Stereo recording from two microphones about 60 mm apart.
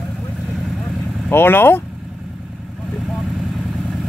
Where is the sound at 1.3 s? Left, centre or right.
Left.